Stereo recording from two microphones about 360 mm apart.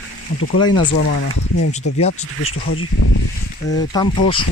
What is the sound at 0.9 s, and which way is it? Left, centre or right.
Speech, left.